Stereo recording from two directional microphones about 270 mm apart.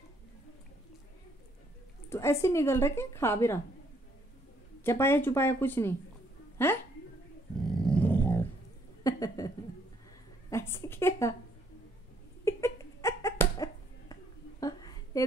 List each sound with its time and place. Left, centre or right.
2.0 s a woman's voice: centre
4.8 s a woman's voice: centre
7.6 s dog: centre
9.0 s a sound: centre
10.5 s a woman's voice: centre
12.4 s a sound: centre